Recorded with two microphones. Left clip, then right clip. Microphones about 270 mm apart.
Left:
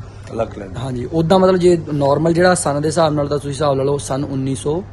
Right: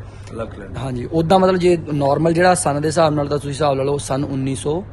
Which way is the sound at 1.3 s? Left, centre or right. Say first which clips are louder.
Left 2 dB; centre.